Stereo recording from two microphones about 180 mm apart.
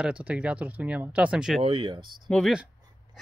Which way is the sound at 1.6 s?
30° right (ahead or behind).